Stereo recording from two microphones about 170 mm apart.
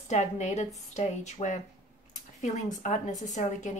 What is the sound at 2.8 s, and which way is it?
Speech, 45° left (ahead or behind).